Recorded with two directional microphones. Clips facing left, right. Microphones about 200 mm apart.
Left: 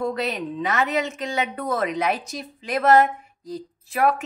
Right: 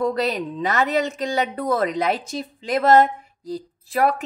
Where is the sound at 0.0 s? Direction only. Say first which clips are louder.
Right 3 dB; 40° right (ahead or behind).